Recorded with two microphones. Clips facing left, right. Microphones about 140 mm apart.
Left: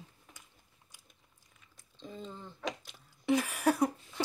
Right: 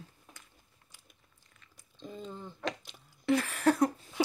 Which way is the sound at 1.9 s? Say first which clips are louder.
Right 2 dB; centre (ahead or behind).